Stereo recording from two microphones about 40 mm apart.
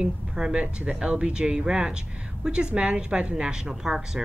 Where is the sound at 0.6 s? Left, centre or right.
Right.